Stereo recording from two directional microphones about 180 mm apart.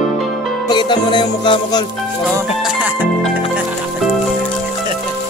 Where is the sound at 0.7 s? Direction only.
25° left (ahead or behind).